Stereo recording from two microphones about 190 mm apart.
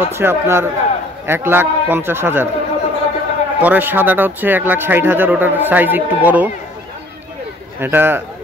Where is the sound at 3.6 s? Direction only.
10° right (ahead or behind).